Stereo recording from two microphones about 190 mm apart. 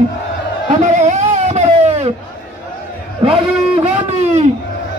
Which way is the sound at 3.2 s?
35° right (ahead or behind).